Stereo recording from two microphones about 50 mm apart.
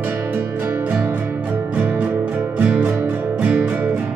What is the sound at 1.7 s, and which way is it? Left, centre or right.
Music, right.